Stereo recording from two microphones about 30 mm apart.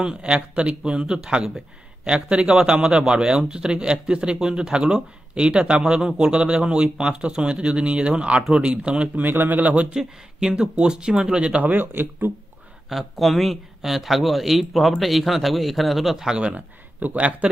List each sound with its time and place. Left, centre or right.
0.0 s speech: right
9.1 s speech: right
9.7 s speech: right
10.5 s speech: right
11.6 s speech: right
12.9 s speech: centre
16.5 s speech: right